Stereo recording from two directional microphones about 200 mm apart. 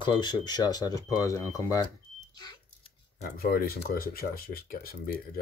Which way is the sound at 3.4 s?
50° left (ahead or behind).